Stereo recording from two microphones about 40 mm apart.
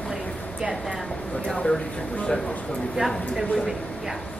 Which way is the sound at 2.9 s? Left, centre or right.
Centre.